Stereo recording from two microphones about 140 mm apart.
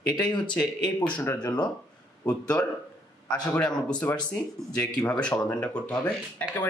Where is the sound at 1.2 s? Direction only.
20° left (ahead or behind).